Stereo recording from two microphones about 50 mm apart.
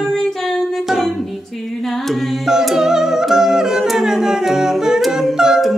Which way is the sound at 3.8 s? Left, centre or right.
Centre.